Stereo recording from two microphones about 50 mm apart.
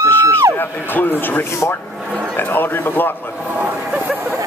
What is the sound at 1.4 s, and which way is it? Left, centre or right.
Speech, left.